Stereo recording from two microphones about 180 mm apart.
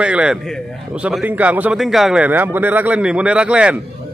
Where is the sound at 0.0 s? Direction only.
5° right (ahead or behind).